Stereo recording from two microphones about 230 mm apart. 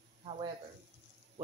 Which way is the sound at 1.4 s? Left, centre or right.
Right.